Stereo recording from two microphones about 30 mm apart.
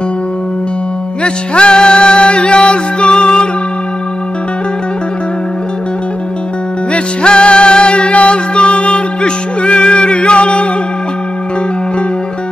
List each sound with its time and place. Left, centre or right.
1.2 s music: left
6.9 s music: left